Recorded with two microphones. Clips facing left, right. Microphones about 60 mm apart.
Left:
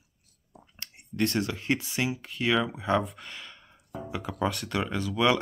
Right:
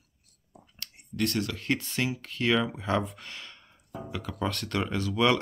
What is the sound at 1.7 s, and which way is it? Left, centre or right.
Speech, centre.